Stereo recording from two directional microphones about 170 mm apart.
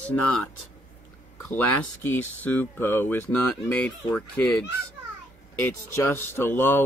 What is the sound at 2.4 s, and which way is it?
Speech, 10° left (ahead or behind).